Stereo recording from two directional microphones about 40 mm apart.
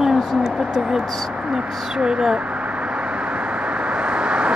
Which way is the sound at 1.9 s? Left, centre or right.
Centre.